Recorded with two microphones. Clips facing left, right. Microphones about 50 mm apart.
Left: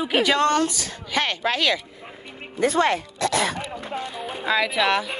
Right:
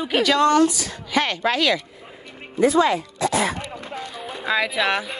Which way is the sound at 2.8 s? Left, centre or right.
Left.